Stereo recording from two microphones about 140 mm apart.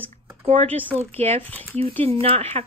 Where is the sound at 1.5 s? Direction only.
10° left (ahead or behind).